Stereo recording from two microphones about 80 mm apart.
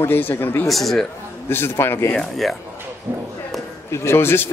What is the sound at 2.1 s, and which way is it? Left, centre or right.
Speech, centre.